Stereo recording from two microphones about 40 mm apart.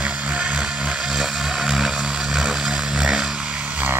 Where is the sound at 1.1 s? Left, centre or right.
Centre.